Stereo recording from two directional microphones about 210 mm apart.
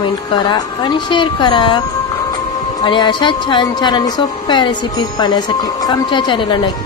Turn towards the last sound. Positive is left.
turn(degrees=25)  # may be behind; listen again after turning